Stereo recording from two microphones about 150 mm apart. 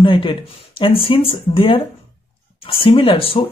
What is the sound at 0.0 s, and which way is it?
Speech, 35° left (ahead or behind).